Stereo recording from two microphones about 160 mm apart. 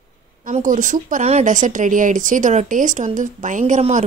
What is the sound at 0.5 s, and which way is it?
Speech, 50° right (ahead or behind).